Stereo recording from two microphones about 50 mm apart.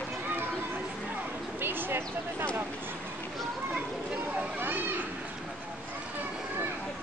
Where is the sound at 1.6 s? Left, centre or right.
Right.